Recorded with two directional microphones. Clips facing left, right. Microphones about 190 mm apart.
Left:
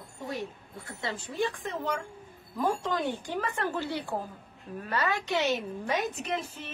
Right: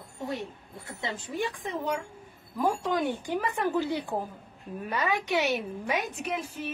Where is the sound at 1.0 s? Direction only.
15° right (ahead or behind).